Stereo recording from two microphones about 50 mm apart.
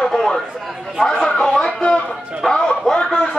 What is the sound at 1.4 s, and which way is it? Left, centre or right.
Music, centre.